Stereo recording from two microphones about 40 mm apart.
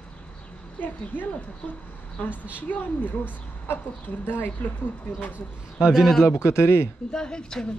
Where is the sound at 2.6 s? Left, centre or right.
Left.